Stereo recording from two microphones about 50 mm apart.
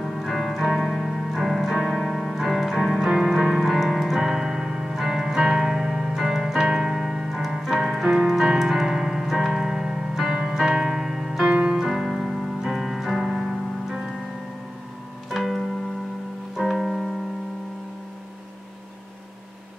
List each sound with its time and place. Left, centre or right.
0.0 s keyboard: centre
0.7 s piano: centre
1.8 s music: centre
11.4 s music: right
11.7 s music: centre
15.2 s music: centre